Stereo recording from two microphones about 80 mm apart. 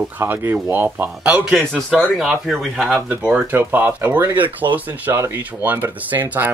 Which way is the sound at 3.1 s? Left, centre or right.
Right.